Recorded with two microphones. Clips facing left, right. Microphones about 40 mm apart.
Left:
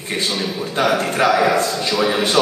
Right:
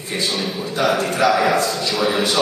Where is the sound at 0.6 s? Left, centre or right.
Left.